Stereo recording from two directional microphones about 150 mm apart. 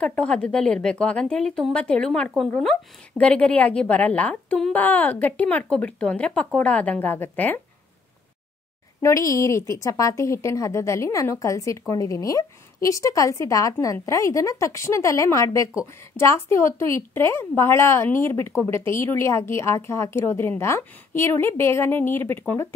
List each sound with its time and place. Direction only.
0.0 s a woman's voice: 10° left (ahead or behind)
9.0 s a woman's voice: 20° left (ahead or behind)